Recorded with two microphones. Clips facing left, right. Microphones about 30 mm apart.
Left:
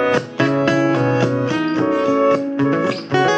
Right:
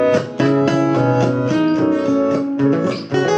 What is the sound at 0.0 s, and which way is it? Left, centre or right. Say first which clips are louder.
Music: right 2 dB; centre.